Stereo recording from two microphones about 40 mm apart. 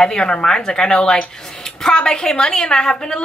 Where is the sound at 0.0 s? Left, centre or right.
Centre.